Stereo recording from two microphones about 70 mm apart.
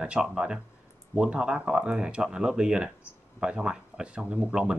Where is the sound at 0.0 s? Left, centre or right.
Centre.